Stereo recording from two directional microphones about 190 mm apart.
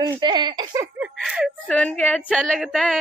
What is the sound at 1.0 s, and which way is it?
A man's voice, centre (ahead or behind).